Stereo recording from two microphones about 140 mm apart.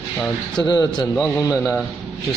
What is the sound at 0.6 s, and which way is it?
A man's voice, 30° left (ahead or behind).